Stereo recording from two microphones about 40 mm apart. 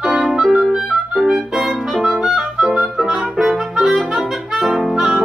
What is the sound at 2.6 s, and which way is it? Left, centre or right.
Music, centre.